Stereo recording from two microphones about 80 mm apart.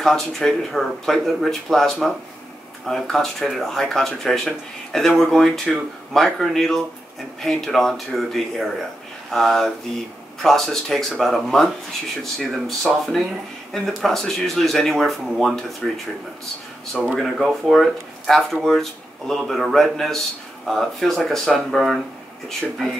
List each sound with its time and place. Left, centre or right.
0.0 s speech: centre
17.2 s speech: centre